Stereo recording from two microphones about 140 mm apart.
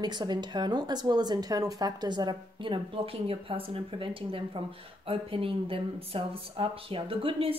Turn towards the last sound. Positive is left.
turn(degrees=-40)  # may be behind; listen again after turning